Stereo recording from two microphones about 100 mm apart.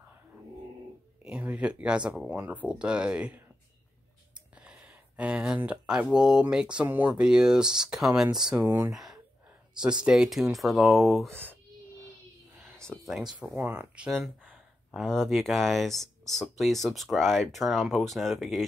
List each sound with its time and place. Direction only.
1.2 s speech: 15° right (ahead or behind)
4.6 s a sound: 15° right (ahead or behind)
5.6 s speech: 15° right (ahead or behind)
8.9 s sigh: 5° right (ahead or behind)
10.0 s speech: 5° right (ahead or behind)
12.8 s a sound: 5° left (ahead or behind)
13.6 s speech: 20° right (ahead or behind)
14.1 s speech: 5° left (ahead or behind)